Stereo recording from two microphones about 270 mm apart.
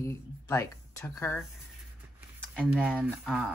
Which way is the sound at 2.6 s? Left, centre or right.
Centre.